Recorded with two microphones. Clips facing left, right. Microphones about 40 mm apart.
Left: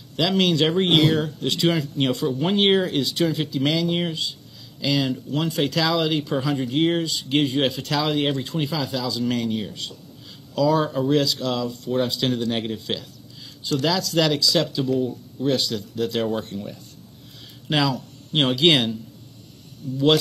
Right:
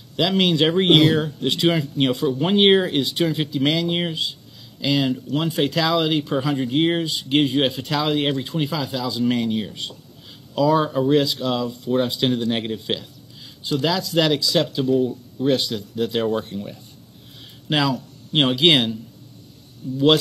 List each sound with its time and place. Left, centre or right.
0.3 s speech: centre
15.7 s a man's voice: centre